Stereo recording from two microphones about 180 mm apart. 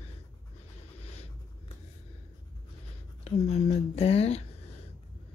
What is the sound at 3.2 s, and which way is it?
Speech, 35° left (ahead or behind).